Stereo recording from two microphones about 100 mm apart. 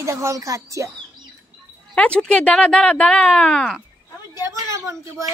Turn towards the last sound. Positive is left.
turn(degrees=-30)  # may be behind; listen again after turning